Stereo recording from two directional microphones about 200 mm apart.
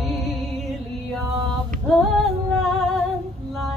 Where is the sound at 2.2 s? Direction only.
Centre (ahead or behind).